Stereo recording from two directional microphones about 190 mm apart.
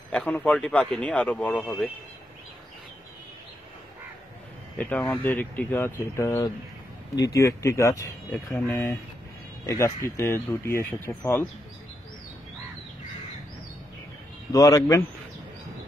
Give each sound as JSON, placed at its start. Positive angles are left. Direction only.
{"t": 0.1, "sound": "speech", "side_deg": 5}
{"t": 4.7, "sound": "speech", "side_deg": 10}
{"t": 14.5, "sound": "speech", "side_deg": 20}